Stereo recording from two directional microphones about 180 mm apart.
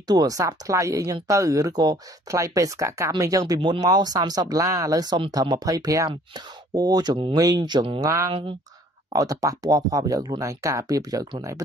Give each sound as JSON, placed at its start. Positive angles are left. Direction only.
{"t": 0.1, "sound": "speech", "side_deg": -20}
{"t": 9.1, "sound": "speech", "side_deg": -20}